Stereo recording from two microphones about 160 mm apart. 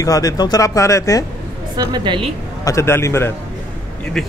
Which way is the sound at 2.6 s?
20° left (ahead or behind).